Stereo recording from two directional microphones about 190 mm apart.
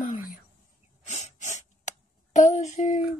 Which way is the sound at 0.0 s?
45° left (ahead or behind).